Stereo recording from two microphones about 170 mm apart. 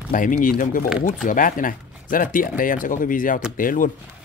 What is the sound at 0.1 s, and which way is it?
Speech, 50° left (ahead or behind).